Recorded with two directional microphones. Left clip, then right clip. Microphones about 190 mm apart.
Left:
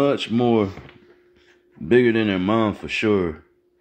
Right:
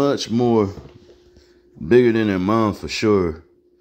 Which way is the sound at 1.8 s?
5° right (ahead or behind).